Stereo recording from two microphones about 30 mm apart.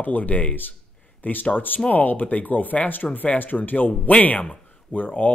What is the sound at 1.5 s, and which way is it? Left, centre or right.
Speech, left.